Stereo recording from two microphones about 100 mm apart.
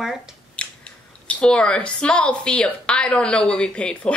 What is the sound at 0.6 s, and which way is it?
Speech, 10° left (ahead or behind).